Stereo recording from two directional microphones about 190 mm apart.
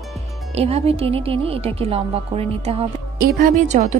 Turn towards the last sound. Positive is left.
turn(degrees=-40)  # may be behind; listen again after turning